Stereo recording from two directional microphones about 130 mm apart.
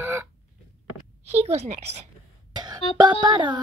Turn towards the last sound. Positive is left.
turn(degrees=-35)  # may be behind; listen again after turning